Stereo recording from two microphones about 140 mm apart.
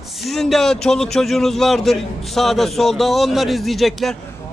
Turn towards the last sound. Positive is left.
turn(degrees=0)  # may be behind; listen again after turning